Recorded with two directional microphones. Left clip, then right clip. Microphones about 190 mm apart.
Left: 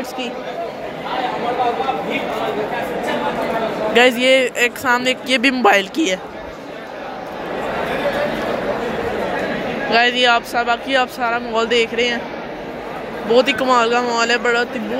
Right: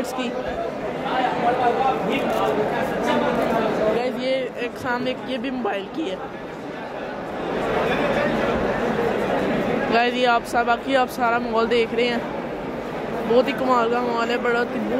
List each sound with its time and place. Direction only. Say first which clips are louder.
4.0 s speech: left 11 dB; 30° left (ahead or behind)
4.6 s speech: left 9 dB; 15° left (ahead or behind)
9.8 s speech: left 6 dB; centre (ahead or behind)
13.3 s speech: left 5 dB; 10° left (ahead or behind)